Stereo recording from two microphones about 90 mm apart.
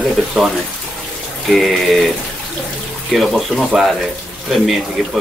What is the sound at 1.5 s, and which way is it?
Speech, centre (ahead or behind).